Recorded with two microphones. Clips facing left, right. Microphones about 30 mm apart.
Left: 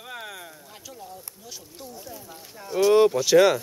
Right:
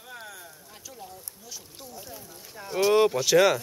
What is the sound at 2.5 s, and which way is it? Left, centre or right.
Speech, centre.